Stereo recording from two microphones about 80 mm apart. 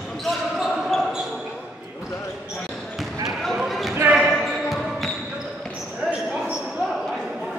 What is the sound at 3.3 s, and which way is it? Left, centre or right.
Basketball bounce, centre.